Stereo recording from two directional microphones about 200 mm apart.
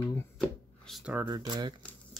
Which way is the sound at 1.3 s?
20° right (ahead or behind).